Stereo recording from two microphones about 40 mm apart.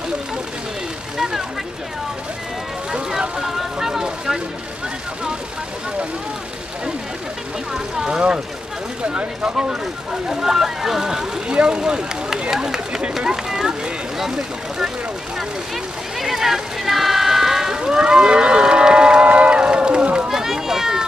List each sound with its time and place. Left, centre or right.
1.1 s vehicle: centre
2.9 s vehicle: centre
3.5 s a sound: centre
8.1 s speech: right
10.2 s speech: centre
10.5 s speech: centre
11.4 s speech: right
12.3 s run: centre
13.3 s speech: centre
15.3 s speech: centre
17.7 s a sound: right
19.3 s run: right
20.2 s run: centre